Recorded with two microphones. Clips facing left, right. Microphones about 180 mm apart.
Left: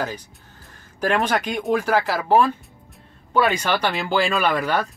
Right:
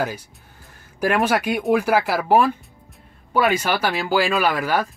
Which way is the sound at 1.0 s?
5° right (ahead or behind).